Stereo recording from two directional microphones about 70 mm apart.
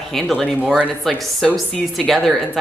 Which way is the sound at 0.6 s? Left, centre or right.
Centre.